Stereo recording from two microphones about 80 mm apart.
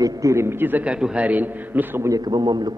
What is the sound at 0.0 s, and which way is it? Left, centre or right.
Speech, right.